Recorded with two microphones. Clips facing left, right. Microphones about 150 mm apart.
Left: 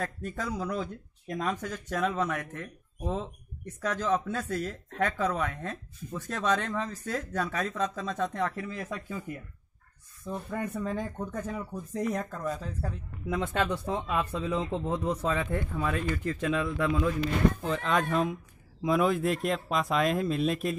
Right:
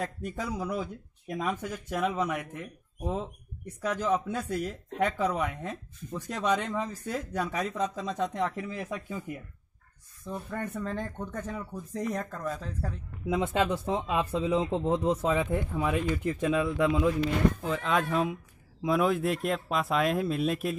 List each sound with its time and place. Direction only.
0.0 s speech: 15° right (ahead or behind)
10.2 s speech: 5° left (ahead or behind)
13.3 s speech: 15° right (ahead or behind)
15.3 s speech: 15° right (ahead or behind)
17.6 s speech: 5° right (ahead or behind)